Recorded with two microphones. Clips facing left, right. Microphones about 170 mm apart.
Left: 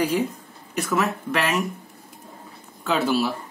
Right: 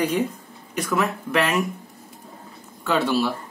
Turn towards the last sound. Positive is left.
turn(degrees=0)  # may be behind; listen again after turning